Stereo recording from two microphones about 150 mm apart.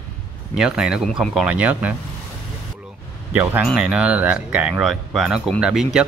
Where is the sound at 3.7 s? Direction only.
5° right (ahead or behind).